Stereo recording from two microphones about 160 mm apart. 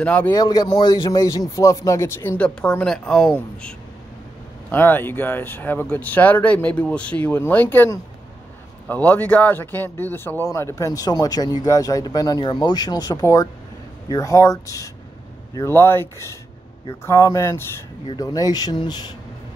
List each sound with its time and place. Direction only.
0.0 s speech: 10° left (ahead or behind)
0.3 s speech: 25° left (ahead or behind)